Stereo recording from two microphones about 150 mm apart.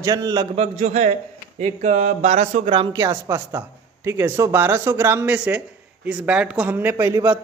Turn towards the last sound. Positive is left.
turn(degrees=-15)  # may be behind; listen again after turning